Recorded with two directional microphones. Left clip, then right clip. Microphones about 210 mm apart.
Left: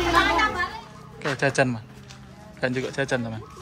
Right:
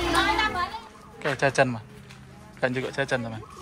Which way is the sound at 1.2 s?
5° left (ahead or behind).